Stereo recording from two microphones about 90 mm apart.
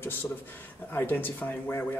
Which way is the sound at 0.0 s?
20° left (ahead or behind).